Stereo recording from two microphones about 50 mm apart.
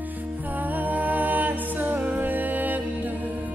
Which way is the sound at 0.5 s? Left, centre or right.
Right.